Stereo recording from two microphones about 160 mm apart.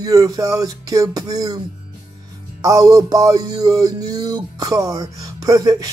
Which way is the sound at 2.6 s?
20° right (ahead or behind).